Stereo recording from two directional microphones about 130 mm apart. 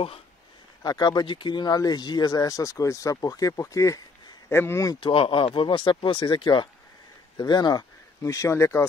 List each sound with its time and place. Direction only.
0.8 s speech: 30° left (ahead or behind)
5.0 s speech: 40° left (ahead or behind); by 8.8 s 20° left (ahead or behind)